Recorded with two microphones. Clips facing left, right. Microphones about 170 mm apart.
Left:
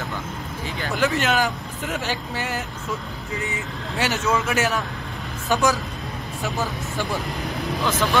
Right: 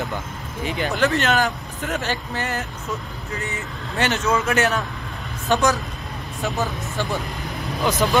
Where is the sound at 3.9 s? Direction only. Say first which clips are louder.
Right 2 dB; 5° left (ahead or behind).